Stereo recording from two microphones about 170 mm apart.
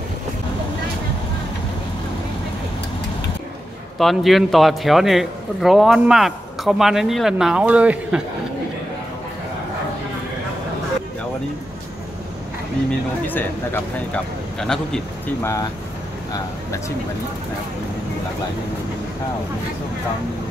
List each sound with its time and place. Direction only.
4.0 s a man's voice: centre (ahead or behind)
14.1 s speech: 5° left (ahead or behind)
15.4 s speech: 15° left (ahead or behind)